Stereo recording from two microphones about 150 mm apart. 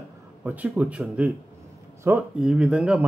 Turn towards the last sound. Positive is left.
turn(degrees=-5)  # may be behind; listen again after turning